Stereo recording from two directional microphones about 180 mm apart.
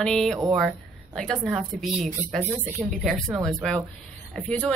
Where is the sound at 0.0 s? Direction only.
5° left (ahead or behind).